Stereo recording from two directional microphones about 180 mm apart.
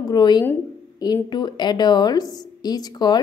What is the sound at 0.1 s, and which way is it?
Speech, 25° left (ahead or behind).